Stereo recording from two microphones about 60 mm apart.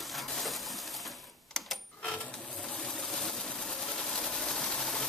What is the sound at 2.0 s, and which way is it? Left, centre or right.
Cash register, centre.